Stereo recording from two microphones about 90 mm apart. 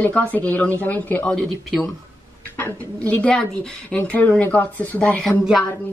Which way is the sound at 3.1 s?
10° left (ahead or behind).